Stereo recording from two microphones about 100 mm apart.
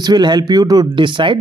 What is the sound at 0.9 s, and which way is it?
Speech, 55° right (ahead or behind).